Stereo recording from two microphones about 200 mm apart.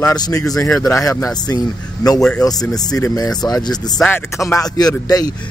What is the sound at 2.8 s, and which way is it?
Speech, 20° left (ahead or behind).